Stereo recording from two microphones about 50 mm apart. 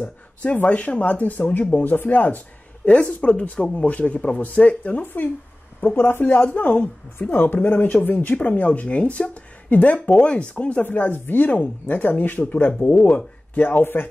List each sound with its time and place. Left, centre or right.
0.0 s speech: left
5.0 s speech: left
7.2 s speech: left
10.8 s speech: left